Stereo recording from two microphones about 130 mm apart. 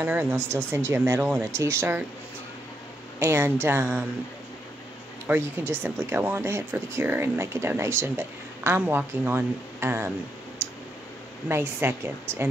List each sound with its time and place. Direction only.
0.0 s speech: 15° right (ahead or behind)
3.2 s speech: 20° right (ahead or behind)
5.2 s speech: 20° right (ahead or behind)
10.6 s clicking: 20° right (ahead or behind)
11.4 s speech: 15° right (ahead or behind)